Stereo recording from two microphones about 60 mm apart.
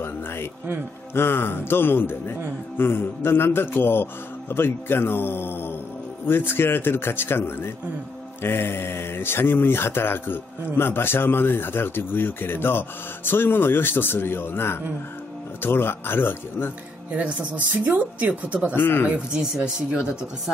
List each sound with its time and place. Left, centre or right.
0.0 s music: left
1.1 s speech: left
17.1 s speech: right
18.8 s speech: left
19.0 s speech: centre